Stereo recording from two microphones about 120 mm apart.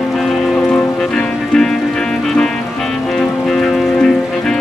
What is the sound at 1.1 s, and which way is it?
Music, 5° left (ahead or behind).